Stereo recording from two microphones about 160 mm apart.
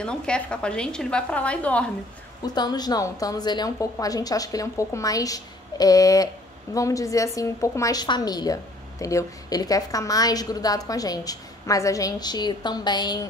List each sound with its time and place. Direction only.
0.0 s a woman's voice: 5° left (ahead or behind)
2.4 s a woman's voice: 25° left (ahead or behind)